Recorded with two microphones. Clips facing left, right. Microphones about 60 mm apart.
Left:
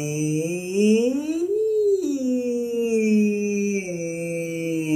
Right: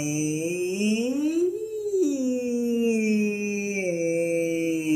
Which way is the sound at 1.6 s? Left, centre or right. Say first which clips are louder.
Left 5 dB; centre.